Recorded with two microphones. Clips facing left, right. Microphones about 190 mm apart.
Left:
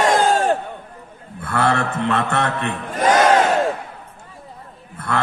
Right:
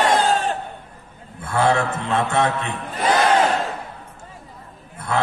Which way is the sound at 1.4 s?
60° left (ahead or behind).